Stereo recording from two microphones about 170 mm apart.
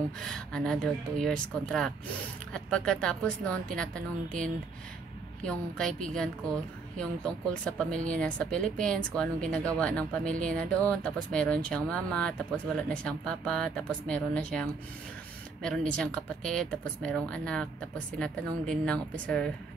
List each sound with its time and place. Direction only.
0.2 s a woman's voice: 5° left (ahead or behind)
7.0 s a woman's voice: 5° left (ahead or behind)